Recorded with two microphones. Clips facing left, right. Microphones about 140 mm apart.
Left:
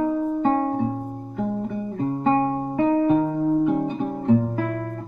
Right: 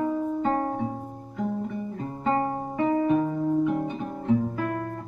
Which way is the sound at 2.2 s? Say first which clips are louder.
Left 4 dB; 35° left (ahead or behind).